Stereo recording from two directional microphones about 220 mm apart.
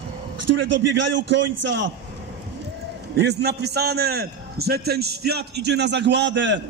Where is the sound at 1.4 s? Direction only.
90° right.